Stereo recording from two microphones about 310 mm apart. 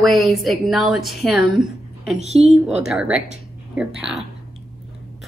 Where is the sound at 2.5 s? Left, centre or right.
Centre.